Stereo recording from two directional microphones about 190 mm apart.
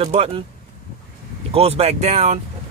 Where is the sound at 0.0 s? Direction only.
30° right (ahead or behind).